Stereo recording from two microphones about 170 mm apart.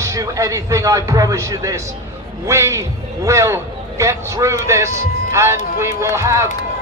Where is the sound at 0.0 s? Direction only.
20° right (ahead or behind).